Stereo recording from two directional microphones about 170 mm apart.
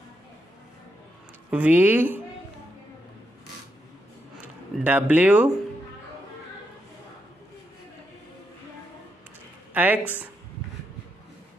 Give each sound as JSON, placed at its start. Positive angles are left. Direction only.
{"t": 1.5, "sound": "a woman's voice", "side_deg": -10}
{"t": 4.8, "sound": "a woman's voice", "side_deg": -10}
{"t": 9.8, "sound": "a woman's voice", "side_deg": -10}